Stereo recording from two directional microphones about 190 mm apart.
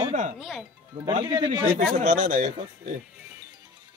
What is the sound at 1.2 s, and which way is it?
Speech, 25° right (ahead or behind).